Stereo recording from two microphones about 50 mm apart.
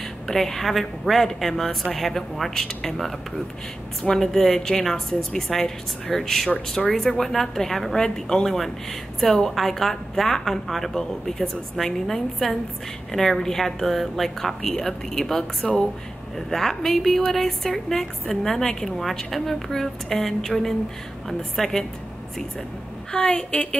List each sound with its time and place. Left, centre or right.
0.3 s a woman's voice: centre
23.1 s a woman's voice: left